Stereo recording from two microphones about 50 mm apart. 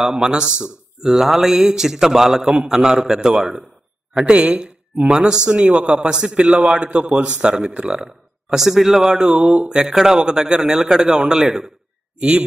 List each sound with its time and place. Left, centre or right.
0.0 s a man's voice: centre
1.0 s a man's voice: centre
12.2 s a man's voice: right